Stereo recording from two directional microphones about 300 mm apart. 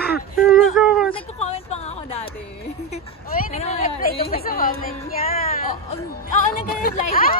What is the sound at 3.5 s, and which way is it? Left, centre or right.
Chatter, left.